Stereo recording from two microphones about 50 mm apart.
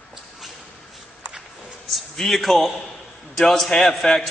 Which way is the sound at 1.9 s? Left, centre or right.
Centre.